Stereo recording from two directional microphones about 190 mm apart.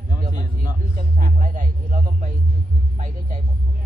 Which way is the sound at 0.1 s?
45° right (ahead or behind).